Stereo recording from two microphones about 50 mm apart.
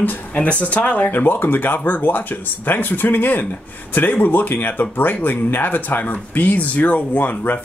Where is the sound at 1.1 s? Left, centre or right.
Left.